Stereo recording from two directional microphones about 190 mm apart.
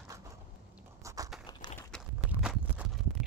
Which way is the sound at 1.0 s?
15° right (ahead or behind).